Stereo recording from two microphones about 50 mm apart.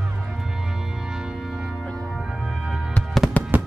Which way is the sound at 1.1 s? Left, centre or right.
Centre.